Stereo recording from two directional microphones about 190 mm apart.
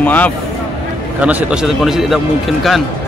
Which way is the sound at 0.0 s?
10° left (ahead or behind).